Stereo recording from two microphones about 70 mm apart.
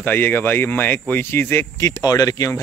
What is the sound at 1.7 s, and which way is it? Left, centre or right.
Speech, left.